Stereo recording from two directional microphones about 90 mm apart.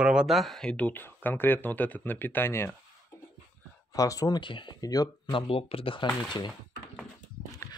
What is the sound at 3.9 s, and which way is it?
Speech, 40° left (ahead or behind).